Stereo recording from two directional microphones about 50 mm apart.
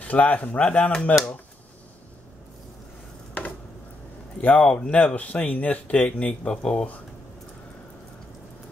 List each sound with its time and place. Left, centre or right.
0.0 s speech: left
4.4 s speech: left